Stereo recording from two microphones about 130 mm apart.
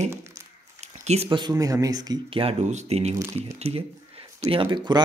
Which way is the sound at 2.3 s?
45° right (ahead or behind).